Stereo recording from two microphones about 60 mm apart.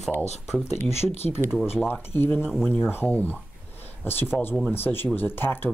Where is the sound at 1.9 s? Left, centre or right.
Left.